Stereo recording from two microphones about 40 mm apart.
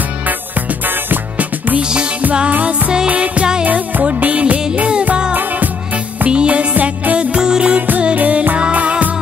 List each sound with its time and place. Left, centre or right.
1.8 s music: right
3.1 s music: right
6.3 s music: right
7.2 s music: right